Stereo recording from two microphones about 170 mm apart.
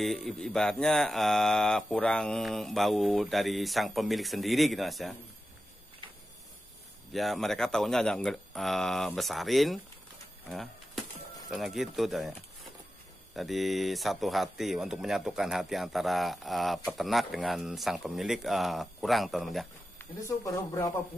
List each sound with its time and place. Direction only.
0.0 s speech: centre (ahead or behind)
7.1 s speech: centre (ahead or behind)
10.5 s a sound: centre (ahead or behind)
11.5 s speech: centre (ahead or behind)
13.3 s speech: centre (ahead or behind)
20.0 s speech: 15° left (ahead or behind)